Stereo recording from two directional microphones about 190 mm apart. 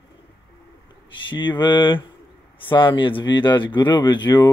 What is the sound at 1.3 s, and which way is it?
Speech, 25° left (ahead or behind).